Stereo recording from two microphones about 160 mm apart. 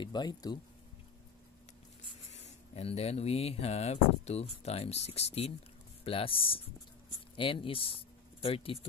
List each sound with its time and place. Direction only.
0.0 s speech: 25° left (ahead or behind)
2.0 s speech: 40° left (ahead or behind)